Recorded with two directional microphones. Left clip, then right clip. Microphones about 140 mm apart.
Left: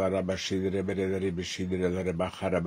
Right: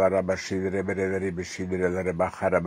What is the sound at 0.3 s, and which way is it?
Speech, 30° left (ahead or behind).